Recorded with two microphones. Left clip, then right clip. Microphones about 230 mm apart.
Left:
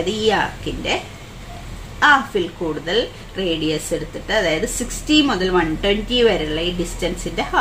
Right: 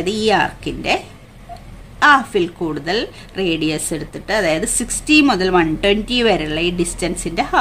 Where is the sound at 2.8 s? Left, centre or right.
Right.